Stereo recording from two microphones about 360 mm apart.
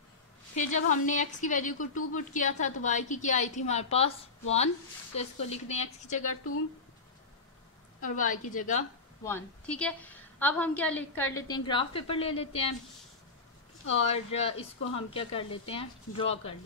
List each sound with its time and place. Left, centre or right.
0.6 s a woman's voice: left
8.0 s a woman's voice: left
9.2 s a woman's voice: centre
14.0 s a woman's voice: centre